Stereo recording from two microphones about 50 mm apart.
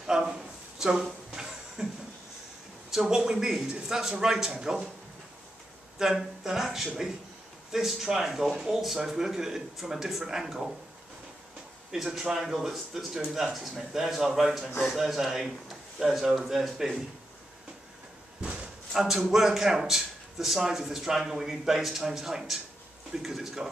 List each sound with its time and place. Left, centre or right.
0.0 s a sound: centre
2.9 s a man's voice: centre
5.9 s a man's voice: centre
11.9 s a man's voice: centre
18.4 s a sound: right
18.9 s a man's voice: centre